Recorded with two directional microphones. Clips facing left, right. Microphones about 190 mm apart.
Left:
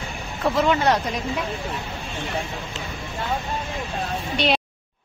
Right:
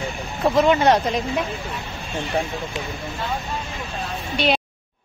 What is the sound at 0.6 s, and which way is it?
Speech, 20° right (ahead or behind).